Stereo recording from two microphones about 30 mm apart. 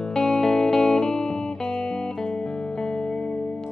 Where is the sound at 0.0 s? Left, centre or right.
Left.